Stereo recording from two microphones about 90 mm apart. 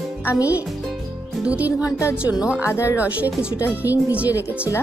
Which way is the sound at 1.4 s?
15° right (ahead or behind).